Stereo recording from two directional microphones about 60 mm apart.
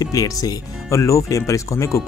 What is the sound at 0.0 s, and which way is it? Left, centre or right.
Speech, left.